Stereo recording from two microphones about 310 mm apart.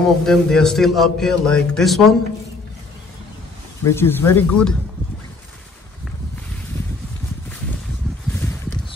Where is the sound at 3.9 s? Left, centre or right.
Centre.